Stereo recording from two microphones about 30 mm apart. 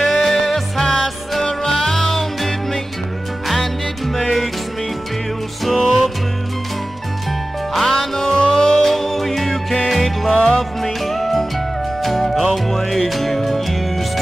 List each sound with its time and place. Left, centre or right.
0.0 s music: centre
1.4 s music: centre
5.6 s music: centre
8.0 s music: centre
8.5 s music: left
8.8 s music: centre
10.3 s music: left
10.8 s music: centre